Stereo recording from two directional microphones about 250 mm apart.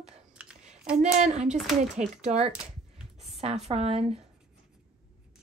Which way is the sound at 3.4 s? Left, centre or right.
Right.